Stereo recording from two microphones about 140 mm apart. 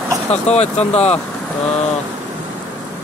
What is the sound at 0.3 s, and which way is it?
Speech, 50° left (ahead or behind).